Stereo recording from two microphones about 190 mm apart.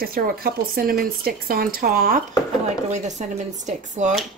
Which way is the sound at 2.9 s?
40° right (ahead or behind).